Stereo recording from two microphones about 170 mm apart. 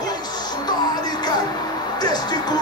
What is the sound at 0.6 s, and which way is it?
Music, 25° left (ahead or behind).